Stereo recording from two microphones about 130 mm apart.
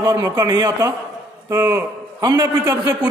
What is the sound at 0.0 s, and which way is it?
A man's voice, 25° right (ahead or behind).